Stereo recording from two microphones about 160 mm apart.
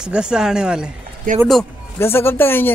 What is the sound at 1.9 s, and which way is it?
Speech, 15° left (ahead or behind).